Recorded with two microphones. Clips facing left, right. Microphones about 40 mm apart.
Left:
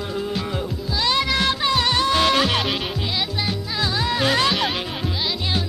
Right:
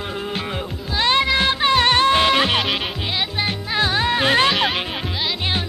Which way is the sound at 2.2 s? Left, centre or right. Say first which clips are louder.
Right 2 dB; right.